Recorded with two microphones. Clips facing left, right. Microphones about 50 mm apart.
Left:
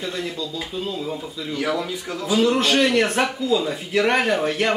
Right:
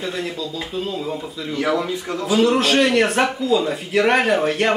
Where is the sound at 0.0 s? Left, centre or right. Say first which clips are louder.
Right 2 dB; centre.